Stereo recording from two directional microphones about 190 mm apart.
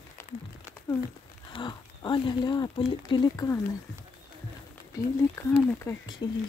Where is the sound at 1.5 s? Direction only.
25° left (ahead or behind).